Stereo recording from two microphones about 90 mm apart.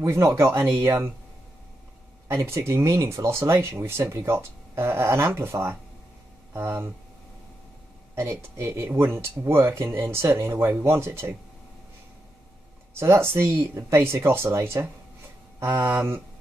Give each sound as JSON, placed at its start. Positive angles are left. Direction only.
{"t": 0.0, "sound": "speech", "side_deg": -30}
{"t": 2.2, "sound": "speech", "side_deg": -30}
{"t": 8.1, "sound": "speech", "side_deg": -30}
{"t": 13.0, "sound": "speech", "side_deg": -30}